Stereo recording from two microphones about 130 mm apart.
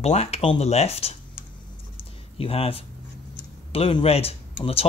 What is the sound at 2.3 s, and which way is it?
Speech, 50° left (ahead or behind).